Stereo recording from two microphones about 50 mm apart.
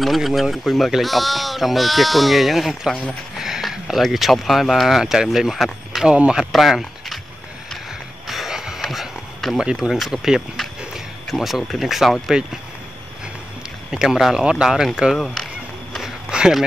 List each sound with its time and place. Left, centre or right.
0.0 s speech: centre
3.3 s a sound: centre
4.0 s speech: centre
6.0 s a man's voice: right
6.5 s speech: centre
8.3 s a sound: centre
9.7 s speech: centre
13.9 s speech: centre
15.1 s speech: centre
16.0 s a sound: centre